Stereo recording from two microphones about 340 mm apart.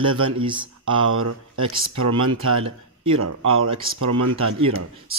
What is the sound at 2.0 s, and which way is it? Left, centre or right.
Speech, right.